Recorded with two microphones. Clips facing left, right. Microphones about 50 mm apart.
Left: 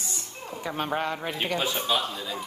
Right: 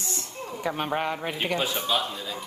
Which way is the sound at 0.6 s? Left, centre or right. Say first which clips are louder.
Right 1 dB; centre.